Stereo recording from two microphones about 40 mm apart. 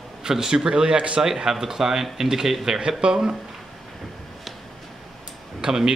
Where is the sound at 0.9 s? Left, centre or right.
Right.